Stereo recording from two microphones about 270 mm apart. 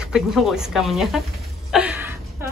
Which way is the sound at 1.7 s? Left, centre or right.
Centre.